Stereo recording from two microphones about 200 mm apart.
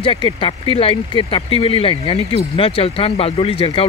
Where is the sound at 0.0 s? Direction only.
25° left (ahead or behind).